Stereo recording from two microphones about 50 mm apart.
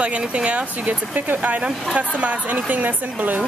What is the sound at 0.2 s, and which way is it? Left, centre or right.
Speech, right.